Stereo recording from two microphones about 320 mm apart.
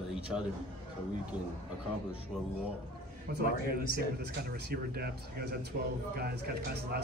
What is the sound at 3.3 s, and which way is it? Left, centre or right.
Speech, right.